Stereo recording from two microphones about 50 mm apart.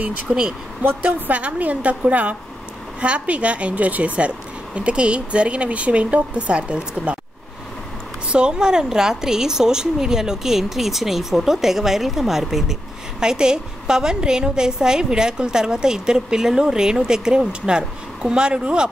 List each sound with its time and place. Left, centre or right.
0.3 s a woman's voice: centre
1.0 s speech: right
8.3 s a woman's voice: centre